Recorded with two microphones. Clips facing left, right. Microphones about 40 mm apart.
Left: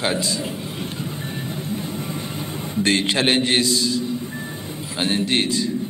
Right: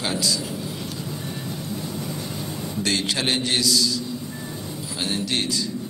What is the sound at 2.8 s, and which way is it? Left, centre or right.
A man's voice, left.